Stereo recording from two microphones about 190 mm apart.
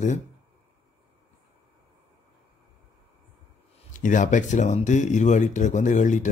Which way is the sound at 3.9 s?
40° left (ahead or behind).